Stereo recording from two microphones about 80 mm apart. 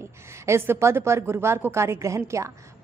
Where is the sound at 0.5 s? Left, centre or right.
Right.